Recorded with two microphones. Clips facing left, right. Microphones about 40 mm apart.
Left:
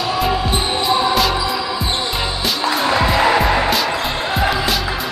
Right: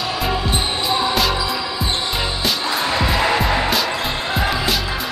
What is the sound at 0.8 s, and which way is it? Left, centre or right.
Music, centre.